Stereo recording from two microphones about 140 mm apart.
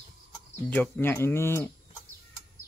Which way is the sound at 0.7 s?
10° left (ahead or behind).